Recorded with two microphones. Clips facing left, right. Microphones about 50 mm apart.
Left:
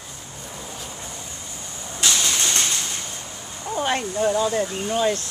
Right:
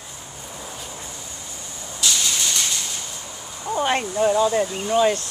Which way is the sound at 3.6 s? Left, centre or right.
Centre.